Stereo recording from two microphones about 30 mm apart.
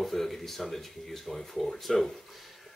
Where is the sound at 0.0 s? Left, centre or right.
Centre.